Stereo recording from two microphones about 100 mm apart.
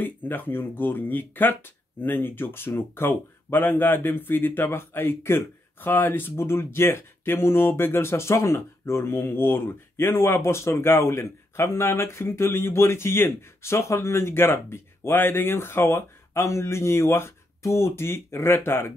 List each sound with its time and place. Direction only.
0.0 s speech: 20° left (ahead or behind)